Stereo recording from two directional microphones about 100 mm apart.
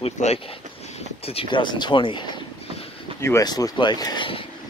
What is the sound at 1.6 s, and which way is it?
Speech, 50° left (ahead or behind).